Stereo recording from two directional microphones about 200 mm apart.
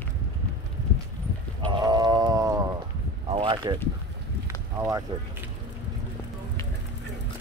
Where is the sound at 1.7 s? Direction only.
20° right (ahead or behind).